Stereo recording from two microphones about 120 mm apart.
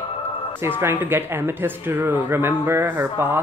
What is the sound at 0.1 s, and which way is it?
Music, 55° left (ahead or behind).